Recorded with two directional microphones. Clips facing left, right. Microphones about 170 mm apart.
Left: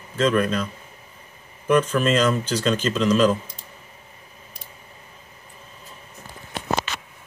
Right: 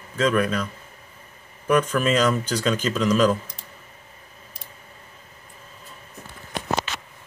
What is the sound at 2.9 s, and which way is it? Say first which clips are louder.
Speech: left 1 dB; 25° left (ahead or behind).